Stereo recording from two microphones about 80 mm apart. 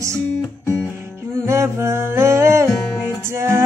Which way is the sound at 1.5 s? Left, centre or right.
Right.